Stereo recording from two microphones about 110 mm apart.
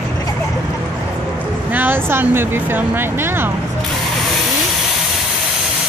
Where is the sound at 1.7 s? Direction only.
20° right (ahead or behind).